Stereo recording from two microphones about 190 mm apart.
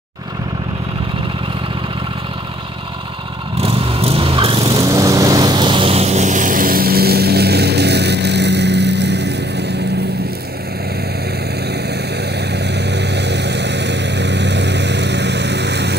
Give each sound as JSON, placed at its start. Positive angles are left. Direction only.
{"t": 3.6, "sound": "vehicle", "side_deg": -30}
{"t": 12.5, "sound": "vehicle", "side_deg": -65}